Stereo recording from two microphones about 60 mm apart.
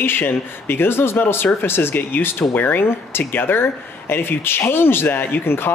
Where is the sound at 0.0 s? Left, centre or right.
Left.